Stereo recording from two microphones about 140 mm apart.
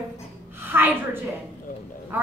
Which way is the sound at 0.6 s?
15° right (ahead or behind).